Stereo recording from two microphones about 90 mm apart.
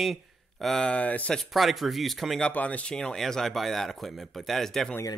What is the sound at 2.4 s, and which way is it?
Speech, 15° left (ahead or behind).